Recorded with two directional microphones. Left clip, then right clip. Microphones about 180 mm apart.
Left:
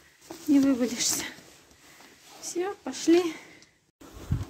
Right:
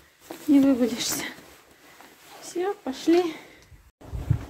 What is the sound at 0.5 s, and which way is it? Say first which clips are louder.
Speech: right 3 dB; 5° right (ahead or behind).